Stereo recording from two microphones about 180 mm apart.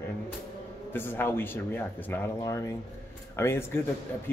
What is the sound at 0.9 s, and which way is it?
Speech, 10° left (ahead or behind).